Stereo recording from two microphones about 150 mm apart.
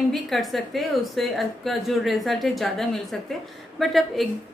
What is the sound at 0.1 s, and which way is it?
A woman's voice, centre (ahead or behind).